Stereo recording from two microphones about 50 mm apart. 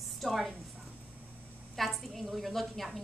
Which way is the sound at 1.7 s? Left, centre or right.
Centre.